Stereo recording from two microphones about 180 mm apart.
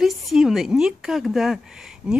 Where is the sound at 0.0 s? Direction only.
Centre (ahead or behind).